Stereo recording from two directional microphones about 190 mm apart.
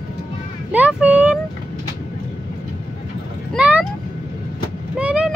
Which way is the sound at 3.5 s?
10° right (ahead or behind).